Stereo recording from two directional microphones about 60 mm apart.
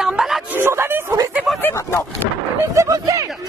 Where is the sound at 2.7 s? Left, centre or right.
Right.